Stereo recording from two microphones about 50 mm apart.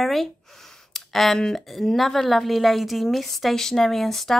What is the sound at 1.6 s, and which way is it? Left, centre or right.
A woman's voice, centre.